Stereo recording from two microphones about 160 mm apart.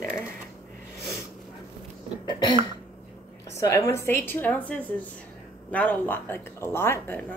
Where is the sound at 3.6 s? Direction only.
20° left (ahead or behind).